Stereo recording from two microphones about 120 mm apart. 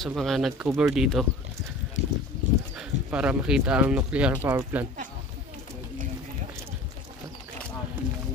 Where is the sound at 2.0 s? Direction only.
65° right (ahead or behind).